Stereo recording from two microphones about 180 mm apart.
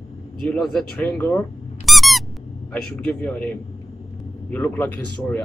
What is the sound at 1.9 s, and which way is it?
Squeak, centre (ahead or behind).